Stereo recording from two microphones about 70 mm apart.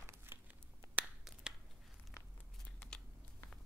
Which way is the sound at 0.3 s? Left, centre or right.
Right.